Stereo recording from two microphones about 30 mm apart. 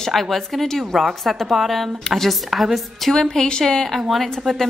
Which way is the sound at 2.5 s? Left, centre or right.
Centre.